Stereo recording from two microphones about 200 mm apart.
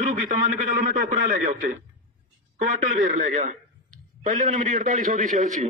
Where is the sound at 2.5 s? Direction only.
40° right (ahead or behind).